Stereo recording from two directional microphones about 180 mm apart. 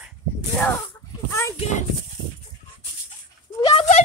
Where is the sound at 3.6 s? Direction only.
35° left (ahead or behind).